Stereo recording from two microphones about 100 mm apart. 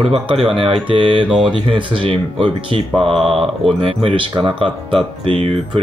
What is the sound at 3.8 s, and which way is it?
Speech, 65° right (ahead or behind).